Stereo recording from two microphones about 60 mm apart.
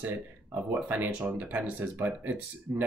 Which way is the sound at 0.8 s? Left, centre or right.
Right.